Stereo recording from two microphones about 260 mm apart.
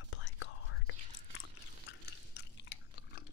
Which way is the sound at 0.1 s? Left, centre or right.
Left.